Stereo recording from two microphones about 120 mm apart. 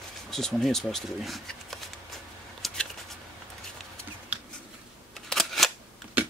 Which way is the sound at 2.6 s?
Centre (ahead or behind).